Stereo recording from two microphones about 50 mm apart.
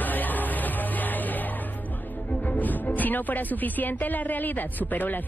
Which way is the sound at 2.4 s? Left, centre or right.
Left.